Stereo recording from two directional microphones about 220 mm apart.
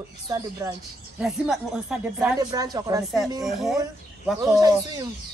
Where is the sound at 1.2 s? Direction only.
5° right (ahead or behind).